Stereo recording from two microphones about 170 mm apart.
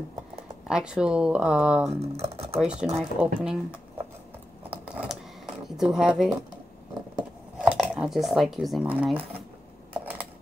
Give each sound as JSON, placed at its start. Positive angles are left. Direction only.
{"t": 0.7, "sound": "speech", "side_deg": -5}
{"t": 1.9, "sound": "speech", "side_deg": -35}
{"t": 2.6, "sound": "speech", "side_deg": -5}
{"t": 4.6, "sound": "typing", "side_deg": -5}
{"t": 5.8, "sound": "speech", "side_deg": -5}
{"t": 7.5, "sound": "speech", "side_deg": -5}